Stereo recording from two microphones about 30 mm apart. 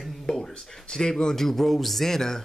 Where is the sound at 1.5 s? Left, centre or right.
Centre.